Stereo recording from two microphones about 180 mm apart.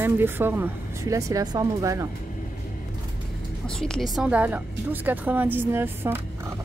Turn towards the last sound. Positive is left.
turn(degrees=-10)  # may be behind; listen again after turning